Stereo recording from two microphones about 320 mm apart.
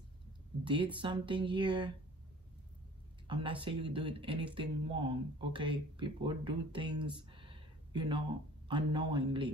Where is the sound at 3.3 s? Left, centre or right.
Centre.